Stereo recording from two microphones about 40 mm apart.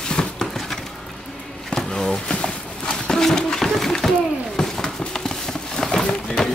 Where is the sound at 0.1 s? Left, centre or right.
Left.